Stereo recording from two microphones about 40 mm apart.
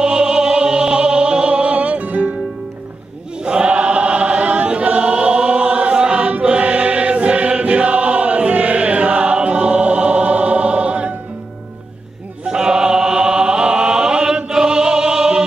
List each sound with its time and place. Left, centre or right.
0.0 s music: right
3.4 s choir: right
12.4 s chant: centre